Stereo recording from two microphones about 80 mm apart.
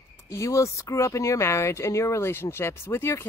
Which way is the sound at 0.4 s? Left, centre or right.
Left.